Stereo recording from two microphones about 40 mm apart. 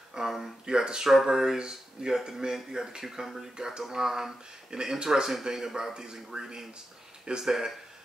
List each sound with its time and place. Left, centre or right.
0.1 s speech: centre